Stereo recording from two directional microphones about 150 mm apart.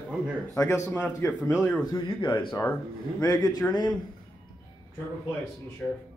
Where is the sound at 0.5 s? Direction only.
20° left (ahead or behind).